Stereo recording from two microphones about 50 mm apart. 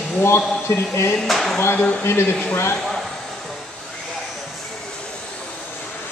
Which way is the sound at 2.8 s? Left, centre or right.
Centre.